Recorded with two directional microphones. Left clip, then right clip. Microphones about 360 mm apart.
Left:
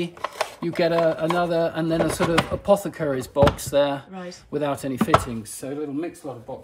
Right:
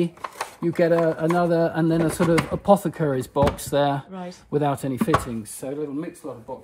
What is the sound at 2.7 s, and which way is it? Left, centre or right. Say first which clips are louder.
Speech: right 3 dB; centre.